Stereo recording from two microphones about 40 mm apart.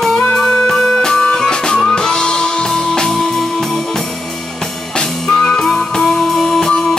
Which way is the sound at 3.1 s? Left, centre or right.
Centre.